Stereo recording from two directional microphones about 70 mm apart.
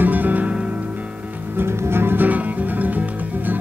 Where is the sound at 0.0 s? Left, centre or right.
Right.